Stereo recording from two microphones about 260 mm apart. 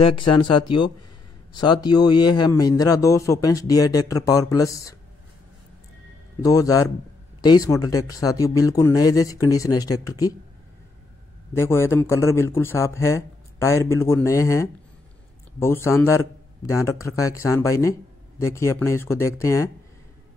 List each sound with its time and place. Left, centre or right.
0.0 s a man's voice: centre
6.4 s a man's voice: centre
11.5 s a man's voice: centre